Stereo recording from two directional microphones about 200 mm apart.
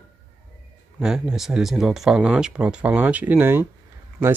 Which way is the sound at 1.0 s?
5° right (ahead or behind).